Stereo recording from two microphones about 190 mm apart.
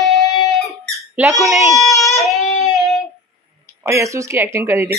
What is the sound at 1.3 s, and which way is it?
Speech, 15° right (ahead or behind).